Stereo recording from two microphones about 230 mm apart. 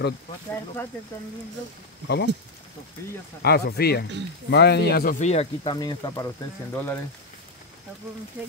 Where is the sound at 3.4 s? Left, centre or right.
Left; by 6.9 s centre.